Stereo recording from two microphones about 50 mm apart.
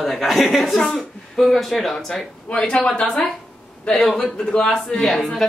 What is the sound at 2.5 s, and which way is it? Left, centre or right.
Speech, centre.